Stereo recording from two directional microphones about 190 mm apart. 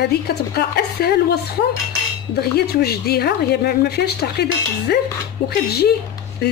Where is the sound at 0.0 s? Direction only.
55° left (ahead or behind).